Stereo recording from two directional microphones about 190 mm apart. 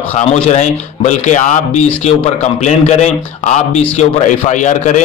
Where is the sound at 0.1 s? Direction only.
35° left (ahead or behind).